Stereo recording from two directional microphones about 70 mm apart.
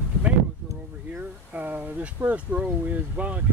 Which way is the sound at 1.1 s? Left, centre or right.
Right.